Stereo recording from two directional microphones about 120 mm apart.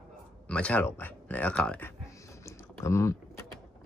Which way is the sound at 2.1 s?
25° left (ahead or behind).